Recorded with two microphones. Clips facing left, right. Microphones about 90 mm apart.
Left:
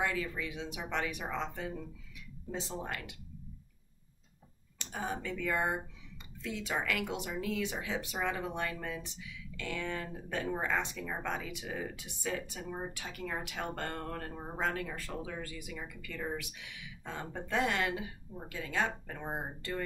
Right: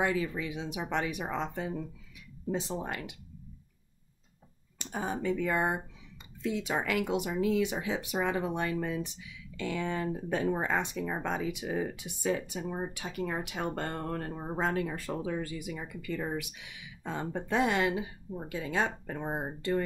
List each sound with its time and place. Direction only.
0.0 s speech: 20° right (ahead or behind)
4.7 s speech: 15° right (ahead or behind)